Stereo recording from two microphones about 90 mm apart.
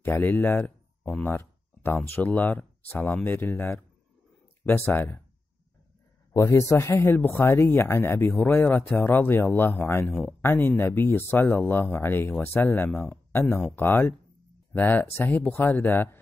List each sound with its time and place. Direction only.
0.0 s speech: 20° left (ahead or behind)
6.5 s speech: 30° left (ahead or behind)